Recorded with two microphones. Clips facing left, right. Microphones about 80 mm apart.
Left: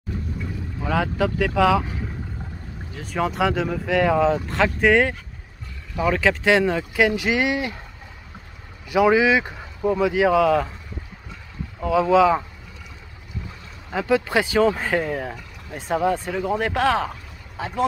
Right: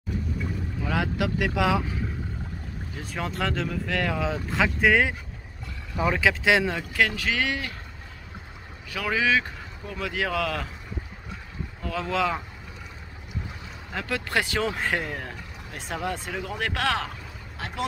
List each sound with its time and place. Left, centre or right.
0.9 s speech: centre
3.0 s speech: centre
4.2 s speech: centre
8.9 s speech: centre
11.8 s speech: centre
13.9 s speech: centre